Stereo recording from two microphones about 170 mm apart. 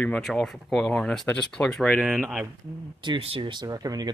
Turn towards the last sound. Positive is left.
turn(degrees=-25)  # may be behind; listen again after turning